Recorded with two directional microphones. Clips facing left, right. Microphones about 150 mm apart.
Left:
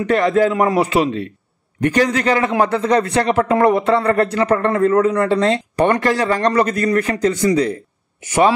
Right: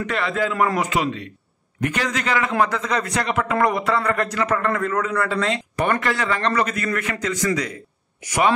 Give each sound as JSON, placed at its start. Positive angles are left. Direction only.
{"t": 0.0, "sound": "a man's voice", "side_deg": 35}